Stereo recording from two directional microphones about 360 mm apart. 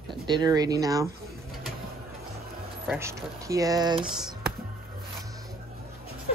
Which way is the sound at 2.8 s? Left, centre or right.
Centre.